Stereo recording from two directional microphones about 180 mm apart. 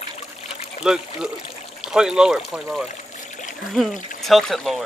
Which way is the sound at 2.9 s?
45° left (ahead or behind).